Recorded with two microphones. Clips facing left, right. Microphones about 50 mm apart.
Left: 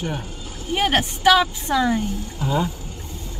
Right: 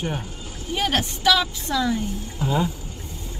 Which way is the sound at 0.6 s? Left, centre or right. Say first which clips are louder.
Left 3 dB; left.